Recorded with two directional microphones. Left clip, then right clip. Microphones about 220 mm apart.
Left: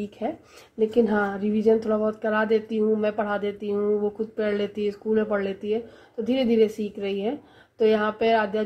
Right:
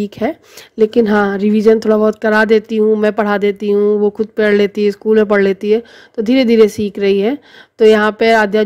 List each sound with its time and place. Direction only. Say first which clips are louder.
0.7 s a woman's voice: right 10 dB; 45° right (ahead or behind)